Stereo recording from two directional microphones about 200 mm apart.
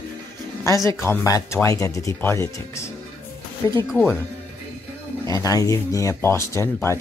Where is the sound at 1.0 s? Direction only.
15° left (ahead or behind).